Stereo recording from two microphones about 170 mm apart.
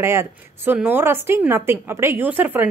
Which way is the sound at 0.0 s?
15° right (ahead or behind).